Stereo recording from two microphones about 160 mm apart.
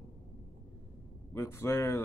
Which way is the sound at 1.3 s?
15° left (ahead or behind).